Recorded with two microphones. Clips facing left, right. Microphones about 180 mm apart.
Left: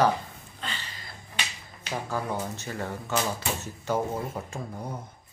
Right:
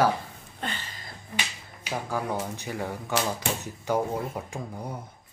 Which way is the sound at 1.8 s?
10° right (ahead or behind).